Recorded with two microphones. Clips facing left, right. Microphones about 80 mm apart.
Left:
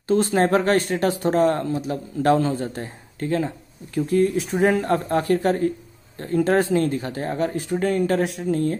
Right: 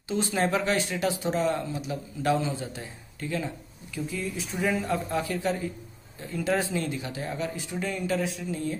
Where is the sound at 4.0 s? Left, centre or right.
Left.